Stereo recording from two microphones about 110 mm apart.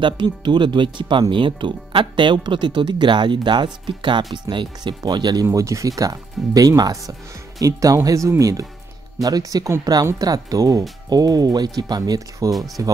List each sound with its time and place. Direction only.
0.0 s speech: 45° right (ahead or behind)